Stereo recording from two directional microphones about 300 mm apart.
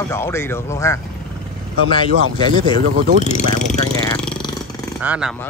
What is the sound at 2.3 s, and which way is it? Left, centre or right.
Speech, centre.